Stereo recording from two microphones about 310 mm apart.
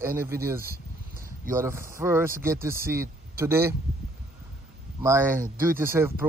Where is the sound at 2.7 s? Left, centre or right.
Right.